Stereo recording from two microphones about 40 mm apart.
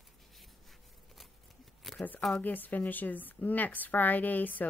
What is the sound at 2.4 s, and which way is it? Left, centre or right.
A woman's voice, left.